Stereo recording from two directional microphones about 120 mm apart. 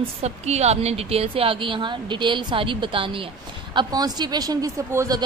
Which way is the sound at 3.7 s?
35° right (ahead or behind).